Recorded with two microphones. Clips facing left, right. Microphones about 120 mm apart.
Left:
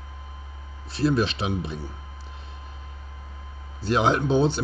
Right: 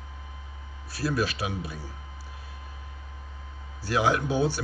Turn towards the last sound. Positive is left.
turn(degrees=25)  # may be behind; listen again after turning